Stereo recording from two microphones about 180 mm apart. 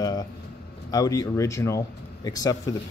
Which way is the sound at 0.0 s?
20° left (ahead or behind).